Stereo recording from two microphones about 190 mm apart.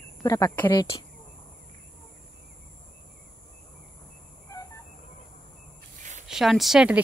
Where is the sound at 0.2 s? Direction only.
15° left (ahead or behind).